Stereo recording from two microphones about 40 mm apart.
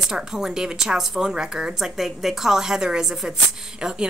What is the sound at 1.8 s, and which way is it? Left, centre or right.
A woman's voice, centre.